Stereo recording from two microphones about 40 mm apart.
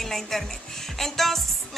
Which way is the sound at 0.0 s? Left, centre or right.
Centre.